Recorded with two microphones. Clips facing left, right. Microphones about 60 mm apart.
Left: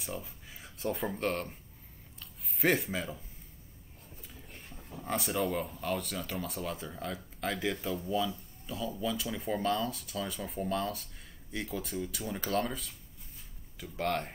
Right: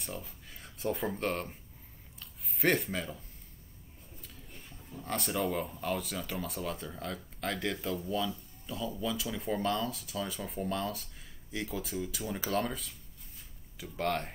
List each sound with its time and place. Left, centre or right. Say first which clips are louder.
0.0 s speech: left 2 dB; centre
2.1 s a sound: even; centre
4.5 s roaring cats: left 2 dB; left
5.0 s speech: left 1 dB; centre